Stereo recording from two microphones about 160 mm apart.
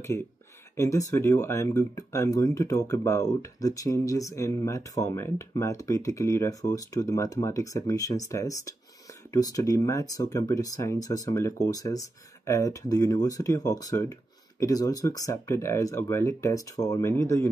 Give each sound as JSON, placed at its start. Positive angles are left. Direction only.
{"t": 0.7, "sound": "speech", "side_deg": 20}